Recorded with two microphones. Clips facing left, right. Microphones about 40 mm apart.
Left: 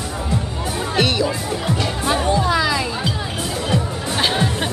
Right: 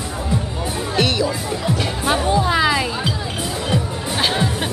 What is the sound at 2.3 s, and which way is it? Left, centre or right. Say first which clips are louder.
Music: right 2 dB; centre.